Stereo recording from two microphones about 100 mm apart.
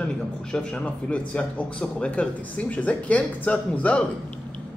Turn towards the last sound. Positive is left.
turn(degrees=10)  # may be behind; listen again after turning